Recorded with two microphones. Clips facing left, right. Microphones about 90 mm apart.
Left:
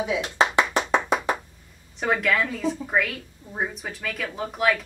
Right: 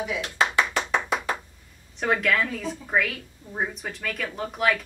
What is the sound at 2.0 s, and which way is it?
A woman's voice, centre (ahead or behind).